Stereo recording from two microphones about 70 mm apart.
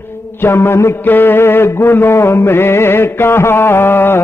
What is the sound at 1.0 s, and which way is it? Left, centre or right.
Mantra, left.